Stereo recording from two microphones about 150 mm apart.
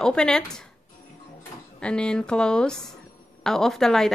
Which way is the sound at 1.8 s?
5° left (ahead or behind).